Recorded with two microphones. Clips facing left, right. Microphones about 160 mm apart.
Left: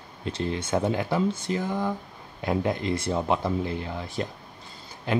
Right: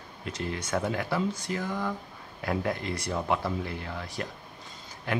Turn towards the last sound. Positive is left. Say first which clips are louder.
# left 5 dB
turn(degrees=25)  # may be behind; listen again after turning